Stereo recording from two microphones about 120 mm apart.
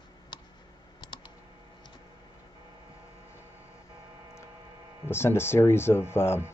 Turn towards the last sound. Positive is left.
turn(degrees=20)  # may be behind; listen again after turning